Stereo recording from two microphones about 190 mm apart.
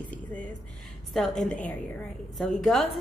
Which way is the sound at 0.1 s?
5° left (ahead or behind).